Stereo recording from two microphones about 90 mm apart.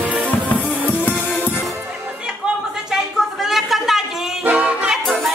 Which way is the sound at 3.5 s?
5° right (ahead or behind).